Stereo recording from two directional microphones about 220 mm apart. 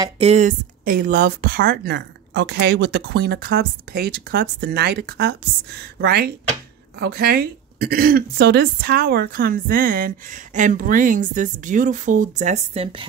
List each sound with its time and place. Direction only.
0.0 s speech: 30° right (ahead or behind)